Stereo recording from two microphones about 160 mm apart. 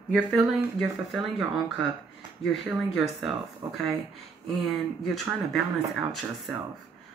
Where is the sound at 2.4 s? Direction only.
Centre (ahead or behind).